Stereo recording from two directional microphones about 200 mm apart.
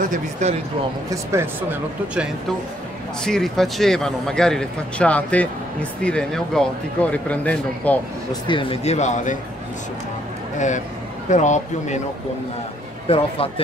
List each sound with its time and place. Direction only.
0.0 s speech: 40° right (ahead or behind)
1.1 s speech: 10° right (ahead or behind)
3.3 s speech: centre (ahead or behind)
8.3 s speech: 25° left (ahead or behind)
11.2 s speech: 35° left (ahead or behind)
13.1 s a man's voice: 30° left (ahead or behind)